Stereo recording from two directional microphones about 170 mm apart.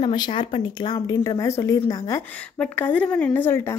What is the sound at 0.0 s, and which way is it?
Speech, 25° left (ahead or behind).